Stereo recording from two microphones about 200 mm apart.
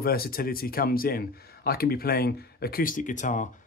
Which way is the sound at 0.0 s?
50° left (ahead or behind).